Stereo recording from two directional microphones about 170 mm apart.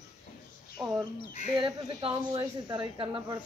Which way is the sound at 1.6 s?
30° right (ahead or behind).